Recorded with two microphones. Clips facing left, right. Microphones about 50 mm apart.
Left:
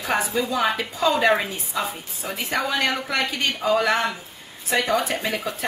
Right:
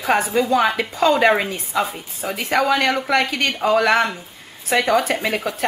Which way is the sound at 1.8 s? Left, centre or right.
Right.